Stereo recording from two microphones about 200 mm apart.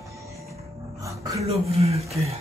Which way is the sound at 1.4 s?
30° right (ahead or behind).